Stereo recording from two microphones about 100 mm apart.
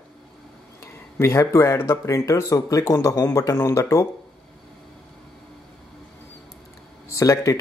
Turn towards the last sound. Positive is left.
turn(degrees=35)  # may be behind; listen again after turning